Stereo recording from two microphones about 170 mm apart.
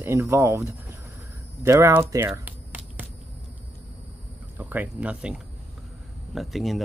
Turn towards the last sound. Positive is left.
turn(degrees=0)  # may be behind; listen again after turning